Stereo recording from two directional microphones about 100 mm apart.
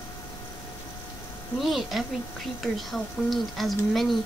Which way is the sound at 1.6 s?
Centre (ahead or behind).